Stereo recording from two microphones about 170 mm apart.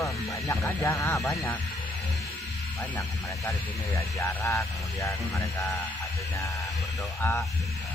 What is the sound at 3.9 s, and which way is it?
Speech, 15° left (ahead or behind).